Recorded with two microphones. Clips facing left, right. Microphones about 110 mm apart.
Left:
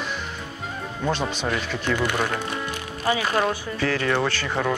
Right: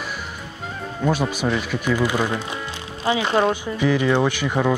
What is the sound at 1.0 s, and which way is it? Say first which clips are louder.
Speech: right 4 dB; 10° right (ahead or behind).